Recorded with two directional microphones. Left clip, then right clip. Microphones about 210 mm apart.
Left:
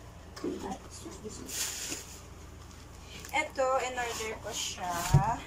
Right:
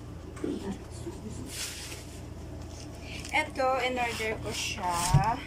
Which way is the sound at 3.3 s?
10° right (ahead or behind).